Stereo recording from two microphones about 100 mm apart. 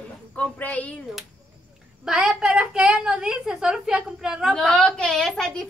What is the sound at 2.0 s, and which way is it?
A woman's voice, 5° right (ahead or behind).